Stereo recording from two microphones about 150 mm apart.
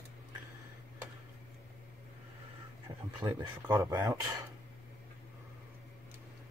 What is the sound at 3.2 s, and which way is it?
Speech, 25° right (ahead or behind).